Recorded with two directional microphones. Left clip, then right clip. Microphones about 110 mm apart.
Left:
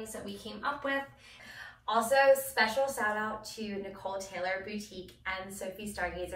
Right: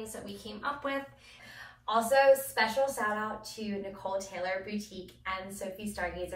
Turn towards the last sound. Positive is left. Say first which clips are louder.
# even
turn(degrees=-15)  # may be behind; listen again after turning